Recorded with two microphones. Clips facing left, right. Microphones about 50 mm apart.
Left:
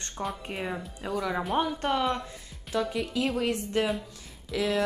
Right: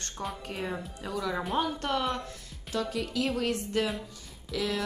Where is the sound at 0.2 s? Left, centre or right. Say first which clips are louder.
Left 2 dB; left.